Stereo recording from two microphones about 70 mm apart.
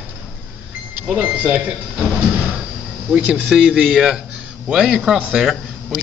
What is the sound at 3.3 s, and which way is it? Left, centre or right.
Speech, centre.